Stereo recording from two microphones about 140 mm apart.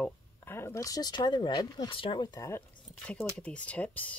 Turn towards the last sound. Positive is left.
turn(degrees=10)  # may be behind; listen again after turning